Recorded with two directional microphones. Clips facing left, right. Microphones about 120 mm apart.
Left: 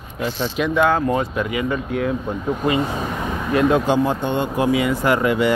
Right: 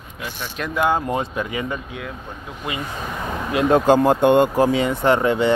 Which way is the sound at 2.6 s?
35° left (ahead or behind).